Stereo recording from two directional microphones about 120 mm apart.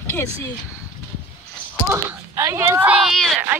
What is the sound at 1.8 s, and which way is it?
Speech, 25° right (ahead or behind).